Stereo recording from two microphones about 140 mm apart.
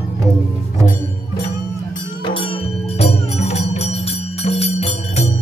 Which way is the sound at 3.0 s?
50° left (ahead or behind).